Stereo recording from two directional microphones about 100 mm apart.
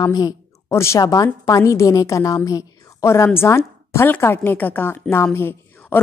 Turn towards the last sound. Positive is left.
turn(degrees=20)  # may be behind; listen again after turning